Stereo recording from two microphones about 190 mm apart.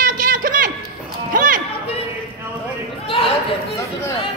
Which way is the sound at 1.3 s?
45° right (ahead or behind).